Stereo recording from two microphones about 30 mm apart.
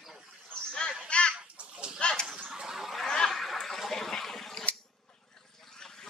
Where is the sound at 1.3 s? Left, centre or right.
Right.